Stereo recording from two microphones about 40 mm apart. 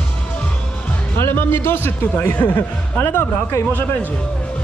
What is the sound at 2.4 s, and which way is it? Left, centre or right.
Speech, left.